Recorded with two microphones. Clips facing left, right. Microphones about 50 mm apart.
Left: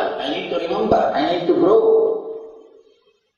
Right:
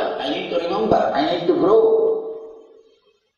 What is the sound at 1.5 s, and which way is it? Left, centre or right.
Speech, centre.